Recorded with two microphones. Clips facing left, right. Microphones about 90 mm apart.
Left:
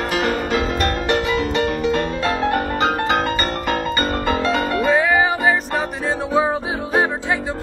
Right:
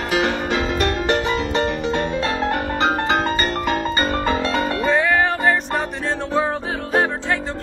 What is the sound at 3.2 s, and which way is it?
Music, 35° right (ahead or behind).